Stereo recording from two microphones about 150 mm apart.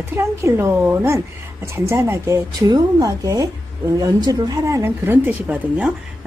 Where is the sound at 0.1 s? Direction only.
15° right (ahead or behind).